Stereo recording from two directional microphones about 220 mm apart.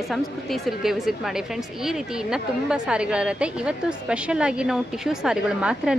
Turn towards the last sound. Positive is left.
turn(degrees=-5)  # may be behind; listen again after turning